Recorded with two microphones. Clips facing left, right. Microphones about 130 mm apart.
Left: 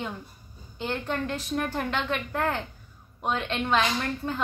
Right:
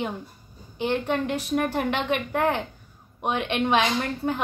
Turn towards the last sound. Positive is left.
turn(degrees=-20)  # may be behind; listen again after turning